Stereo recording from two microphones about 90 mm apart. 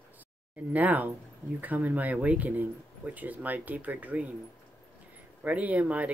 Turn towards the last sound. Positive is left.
turn(degrees=-15)  # may be behind; listen again after turning